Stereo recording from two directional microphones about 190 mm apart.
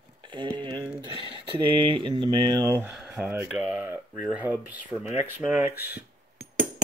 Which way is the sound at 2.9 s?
5° right (ahead or behind).